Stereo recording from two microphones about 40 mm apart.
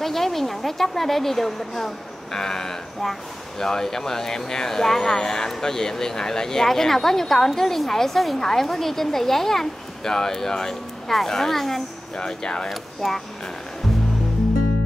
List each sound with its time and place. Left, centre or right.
0.0 s a woman's voice: centre
12.2 s speech: centre
12.6 s speech: centre